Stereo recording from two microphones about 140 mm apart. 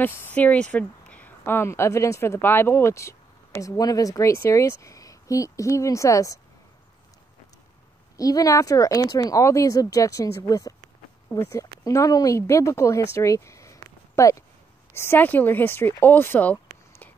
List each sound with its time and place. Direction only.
0.0 s speech: 15° left (ahead or behind)
8.2 s speech: 25° left (ahead or behind)